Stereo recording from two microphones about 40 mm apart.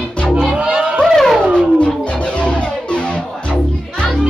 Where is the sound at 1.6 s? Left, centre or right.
Left.